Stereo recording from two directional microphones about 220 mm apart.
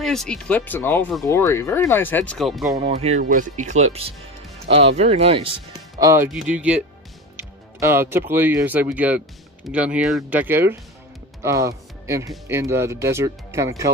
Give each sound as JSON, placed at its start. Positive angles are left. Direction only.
{"t": 0.0, "sound": "speech", "side_deg": 0}
{"t": 2.9, "sound": "speech", "side_deg": -30}